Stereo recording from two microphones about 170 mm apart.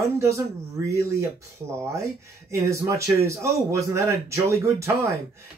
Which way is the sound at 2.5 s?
15° right (ahead or behind).